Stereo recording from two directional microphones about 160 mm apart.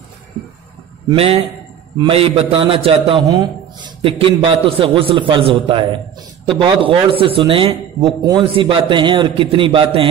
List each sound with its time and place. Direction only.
1.1 s a man's voice: 35° right (ahead or behind)